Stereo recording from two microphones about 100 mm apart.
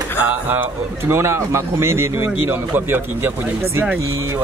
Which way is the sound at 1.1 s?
25° right (ahead or behind).